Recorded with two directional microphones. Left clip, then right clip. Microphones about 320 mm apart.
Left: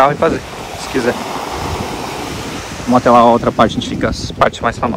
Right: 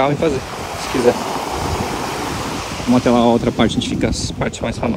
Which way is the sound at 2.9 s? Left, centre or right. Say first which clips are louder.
Left 6 dB; centre.